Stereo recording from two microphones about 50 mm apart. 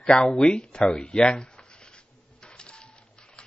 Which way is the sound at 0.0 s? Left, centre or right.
Centre.